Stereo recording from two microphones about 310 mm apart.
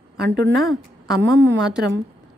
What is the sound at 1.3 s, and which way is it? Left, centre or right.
Speech, right.